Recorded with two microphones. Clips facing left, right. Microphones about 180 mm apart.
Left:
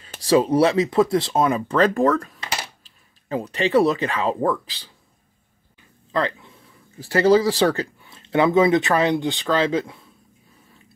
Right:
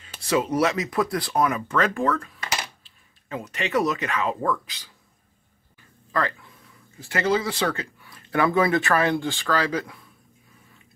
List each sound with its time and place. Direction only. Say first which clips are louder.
0.0 s speech: left 6 dB; 35° left (ahead or behind)
6.1 s speech: left 3 dB; 20° left (ahead or behind)
7.0 s speech: left 8 dB; 35° left (ahead or behind)